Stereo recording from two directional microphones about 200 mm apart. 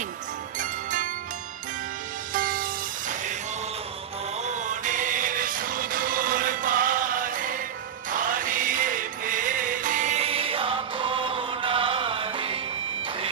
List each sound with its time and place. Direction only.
0.6 s music: 40° right (ahead or behind)
2.3 s music: 45° right (ahead or behind)
4.4 s music: 35° right (ahead or behind)